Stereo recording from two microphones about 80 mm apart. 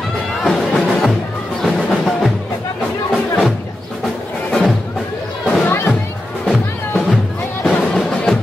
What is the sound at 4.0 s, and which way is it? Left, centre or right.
Music, centre.